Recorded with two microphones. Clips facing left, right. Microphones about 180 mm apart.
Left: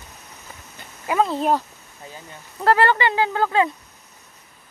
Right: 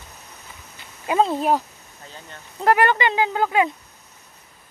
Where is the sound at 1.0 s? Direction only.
25° right (ahead or behind).